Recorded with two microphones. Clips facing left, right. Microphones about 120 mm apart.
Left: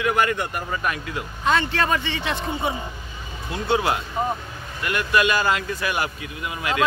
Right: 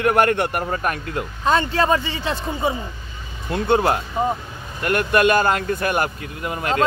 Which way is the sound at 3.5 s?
50° right (ahead or behind).